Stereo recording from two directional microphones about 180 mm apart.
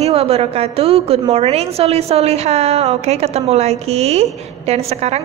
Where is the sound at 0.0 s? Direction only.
35° right (ahead or behind).